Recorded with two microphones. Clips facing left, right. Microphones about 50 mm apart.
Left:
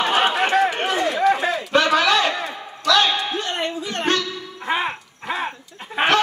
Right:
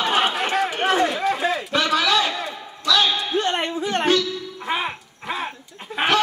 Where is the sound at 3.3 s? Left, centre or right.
Right.